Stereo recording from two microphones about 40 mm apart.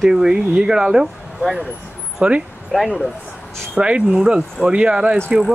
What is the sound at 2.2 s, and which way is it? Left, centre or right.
Speech, right.